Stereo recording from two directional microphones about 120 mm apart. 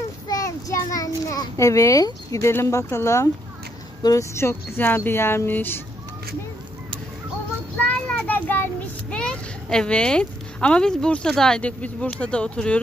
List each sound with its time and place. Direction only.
0.3 s child singing: 30° left (ahead or behind)
4.0 s speech: 25° left (ahead or behind)
7.8 s child singing: 10° left (ahead or behind)
9.1 s speech: 5° left (ahead or behind)